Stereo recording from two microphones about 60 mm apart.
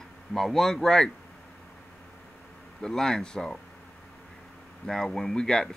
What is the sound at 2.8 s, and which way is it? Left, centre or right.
Speech, centre.